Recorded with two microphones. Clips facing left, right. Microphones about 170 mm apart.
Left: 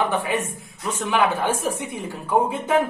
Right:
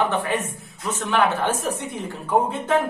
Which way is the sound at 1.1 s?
10° left (ahead or behind).